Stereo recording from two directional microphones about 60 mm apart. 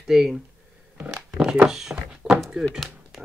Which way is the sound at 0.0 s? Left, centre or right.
Centre.